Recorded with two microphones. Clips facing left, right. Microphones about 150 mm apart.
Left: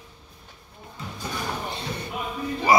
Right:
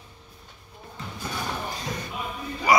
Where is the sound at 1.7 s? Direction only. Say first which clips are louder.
Even; 30° left (ahead or behind).